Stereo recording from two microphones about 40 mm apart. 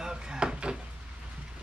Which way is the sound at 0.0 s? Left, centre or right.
Centre.